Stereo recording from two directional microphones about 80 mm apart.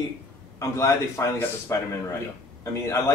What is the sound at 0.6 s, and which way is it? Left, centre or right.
A man's voice, left.